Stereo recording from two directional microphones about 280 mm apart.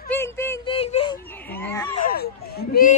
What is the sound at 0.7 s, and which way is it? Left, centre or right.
Whimper, centre.